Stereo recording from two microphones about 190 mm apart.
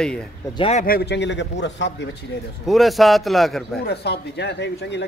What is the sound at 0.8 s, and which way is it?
A man's voice, 55° left (ahead or behind).